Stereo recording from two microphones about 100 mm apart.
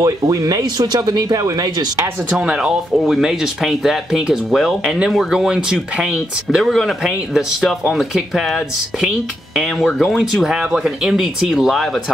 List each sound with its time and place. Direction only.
0.0 s speech: 35° right (ahead or behind)
2.3 s speech: 5° right (ahead or behind)
9.9 s speech: centre (ahead or behind)